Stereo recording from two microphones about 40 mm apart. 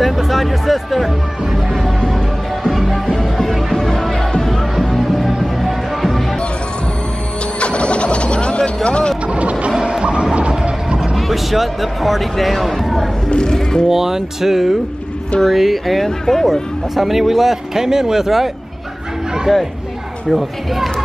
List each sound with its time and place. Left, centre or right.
0.0 s music: centre
7.6 s bird: left
8.8 s speech: left
9.3 s vehicle: right
9.7 s music: centre
10.5 s vehicle: right
11.1 s speech: centre
13.3 s speech: centre
13.8 s speech: centre
16.9 s speech: centre
20.2 s speech: centre